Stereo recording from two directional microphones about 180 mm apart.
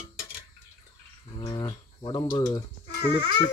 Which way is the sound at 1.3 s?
25° left (ahead or behind).